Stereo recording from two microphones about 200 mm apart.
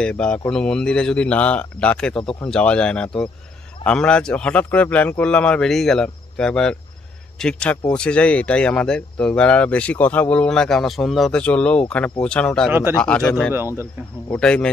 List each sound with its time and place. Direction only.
0.0 s speech: 5° left (ahead or behind)